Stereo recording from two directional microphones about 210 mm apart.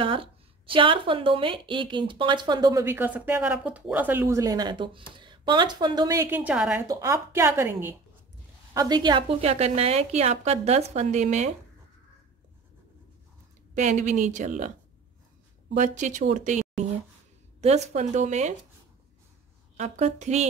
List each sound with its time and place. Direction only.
0.0 s a woman's voice: 25° right (ahead or behind)
13.7 s speech: 35° right (ahead or behind)
15.7 s speech: 35° right (ahead or behind)
19.8 s speech: 35° right (ahead or behind)